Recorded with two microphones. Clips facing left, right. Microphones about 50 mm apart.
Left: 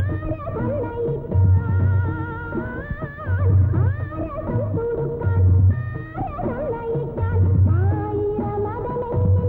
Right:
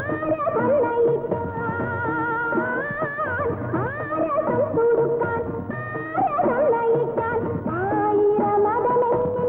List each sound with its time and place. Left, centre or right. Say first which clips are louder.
0.3 s music: right 7 dB; right
3.4 s music: right 1 dB; right
6.1 s music of bollywood: right 7 dB; right